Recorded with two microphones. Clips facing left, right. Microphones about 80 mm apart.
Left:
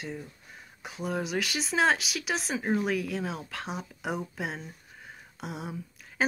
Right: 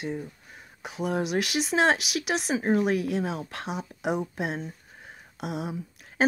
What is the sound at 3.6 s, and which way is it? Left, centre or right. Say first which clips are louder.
Speech: right 5 dB; centre.